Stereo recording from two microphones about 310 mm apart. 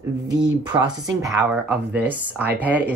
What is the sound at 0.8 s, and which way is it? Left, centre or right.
Speech, centre.